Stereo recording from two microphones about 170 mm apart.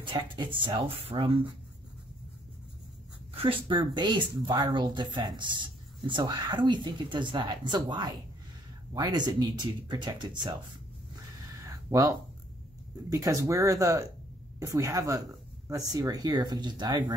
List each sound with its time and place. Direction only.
0.0 s speech: 30° right (ahead or behind)
3.3 s speech: 30° right (ahead or behind)
11.7 s a sound: 20° right (ahead or behind)
13.1 s speech: 20° right (ahead or behind)